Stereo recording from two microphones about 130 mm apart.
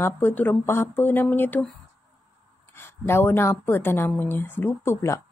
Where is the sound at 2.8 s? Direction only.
20° left (ahead or behind).